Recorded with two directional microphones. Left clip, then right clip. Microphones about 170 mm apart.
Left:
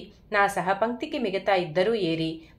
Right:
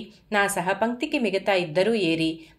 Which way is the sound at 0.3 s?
35° right (ahead or behind).